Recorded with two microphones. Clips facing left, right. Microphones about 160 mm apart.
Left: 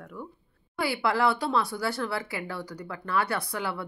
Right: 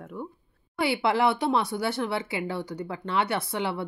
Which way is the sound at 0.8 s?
25° right (ahead or behind).